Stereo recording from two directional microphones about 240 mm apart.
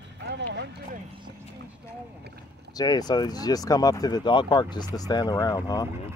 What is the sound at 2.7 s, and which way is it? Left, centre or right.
Speech, centre.